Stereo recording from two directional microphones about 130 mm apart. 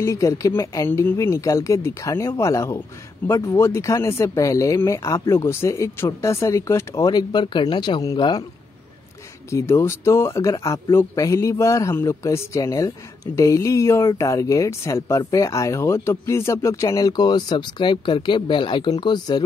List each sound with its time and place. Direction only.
0.0 s speech: 25° left (ahead or behind)
9.5 s speech: 20° left (ahead or behind)